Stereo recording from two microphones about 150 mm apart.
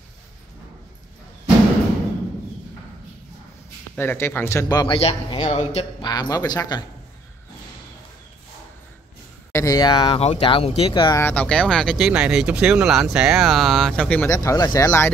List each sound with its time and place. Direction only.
3.9 s speech: 15° left (ahead or behind)
4.9 s a man's voice: 40° left (ahead or behind)
5.9 s speech: 25° left (ahead or behind)
9.5 s speech: 20° left (ahead or behind)
11.1 s speech: 10° left (ahead or behind)
14.3 s speech: 20° left (ahead or behind)